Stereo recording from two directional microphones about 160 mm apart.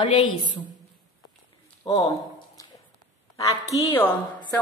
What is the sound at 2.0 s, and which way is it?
Squish, 25° left (ahead or behind).